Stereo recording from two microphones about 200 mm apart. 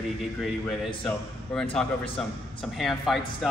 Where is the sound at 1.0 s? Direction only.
5° left (ahead or behind).